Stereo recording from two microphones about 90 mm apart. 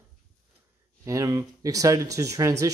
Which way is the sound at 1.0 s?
35° right (ahead or behind).